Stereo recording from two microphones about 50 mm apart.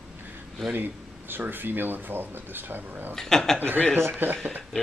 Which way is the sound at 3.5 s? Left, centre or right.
Right.